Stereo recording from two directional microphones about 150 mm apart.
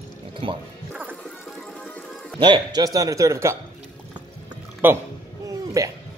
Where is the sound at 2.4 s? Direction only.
30° right (ahead or behind).